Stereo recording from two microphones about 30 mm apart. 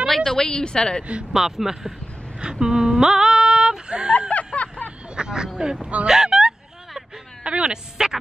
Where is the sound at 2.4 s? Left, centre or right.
Right.